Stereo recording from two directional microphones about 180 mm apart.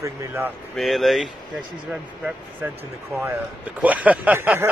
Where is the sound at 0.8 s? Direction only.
Centre (ahead or behind).